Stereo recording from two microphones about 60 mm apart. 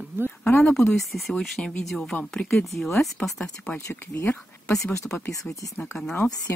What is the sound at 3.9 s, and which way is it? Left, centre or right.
Speech, left.